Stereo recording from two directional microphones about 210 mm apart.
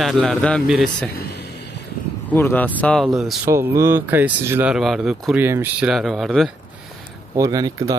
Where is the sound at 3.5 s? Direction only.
10° right (ahead or behind).